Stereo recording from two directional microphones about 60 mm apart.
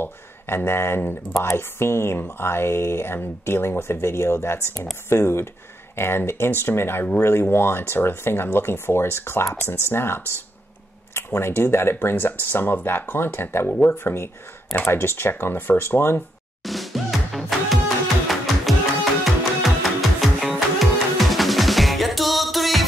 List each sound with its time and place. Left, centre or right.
0.0 s speech: left
16.6 s music: centre